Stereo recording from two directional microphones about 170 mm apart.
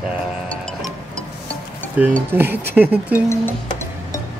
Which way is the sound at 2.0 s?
10° right (ahead or behind).